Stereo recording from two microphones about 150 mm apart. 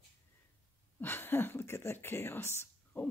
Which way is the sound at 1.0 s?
15° left (ahead or behind).